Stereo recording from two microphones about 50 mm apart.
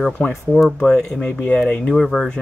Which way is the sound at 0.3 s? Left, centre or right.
Centre.